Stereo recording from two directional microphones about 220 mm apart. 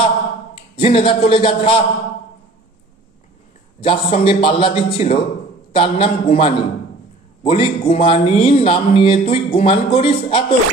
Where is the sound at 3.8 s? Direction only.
25° left (ahead or behind).